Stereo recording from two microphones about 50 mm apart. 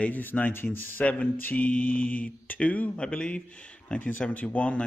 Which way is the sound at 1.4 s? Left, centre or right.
Left.